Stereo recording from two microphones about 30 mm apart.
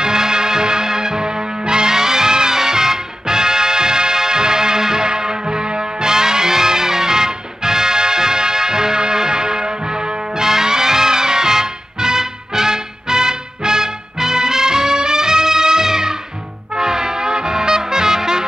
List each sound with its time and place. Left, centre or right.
0.0 s music: right
16.7 s brass instrument: right